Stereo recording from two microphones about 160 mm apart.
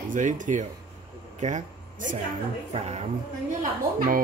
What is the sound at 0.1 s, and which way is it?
Speech, 55° right (ahead or behind).